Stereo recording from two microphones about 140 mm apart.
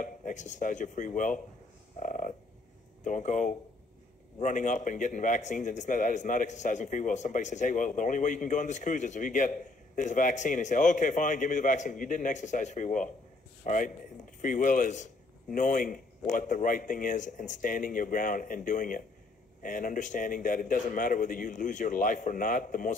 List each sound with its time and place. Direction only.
0.0 s speech: 65° left (ahead or behind)
2.0 s frog: 70° left (ahead or behind)
3.0 s a man's voice: 65° left (ahead or behind)